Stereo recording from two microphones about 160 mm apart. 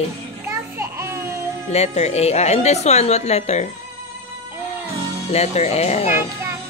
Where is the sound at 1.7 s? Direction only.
40° left (ahead or behind).